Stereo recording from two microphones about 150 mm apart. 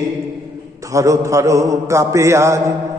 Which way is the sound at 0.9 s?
20° right (ahead or behind).